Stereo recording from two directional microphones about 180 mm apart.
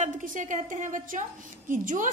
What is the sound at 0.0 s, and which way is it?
A woman's voice, 45° right (ahead or behind).